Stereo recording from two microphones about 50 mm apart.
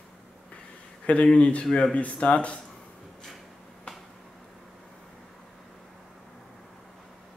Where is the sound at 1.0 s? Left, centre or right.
Left.